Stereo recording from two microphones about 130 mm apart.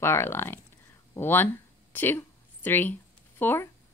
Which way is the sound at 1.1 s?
15° left (ahead or behind).